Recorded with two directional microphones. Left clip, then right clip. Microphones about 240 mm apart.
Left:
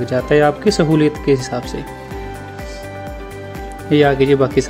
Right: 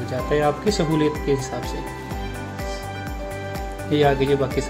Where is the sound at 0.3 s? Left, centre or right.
Left.